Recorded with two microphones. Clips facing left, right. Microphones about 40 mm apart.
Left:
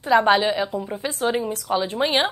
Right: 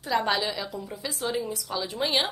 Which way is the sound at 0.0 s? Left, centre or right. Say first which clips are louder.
Left 9 dB; left.